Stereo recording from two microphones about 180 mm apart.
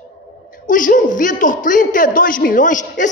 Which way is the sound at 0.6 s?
45° left (ahead or behind).